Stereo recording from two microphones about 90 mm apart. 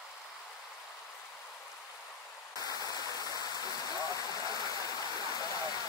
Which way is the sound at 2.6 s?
45° left (ahead or behind).